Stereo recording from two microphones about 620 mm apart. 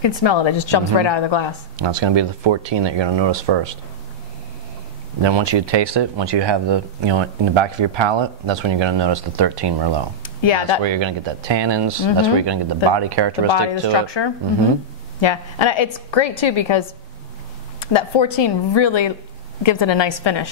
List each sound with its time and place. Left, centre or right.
0.0 s a woman's voice: left
1.8 s speech: right
5.2 s speech: right
10.4 s a woman's voice: left
10.8 s speech: right
13.5 s a woman's voice: left
17.9 s a woman's voice: left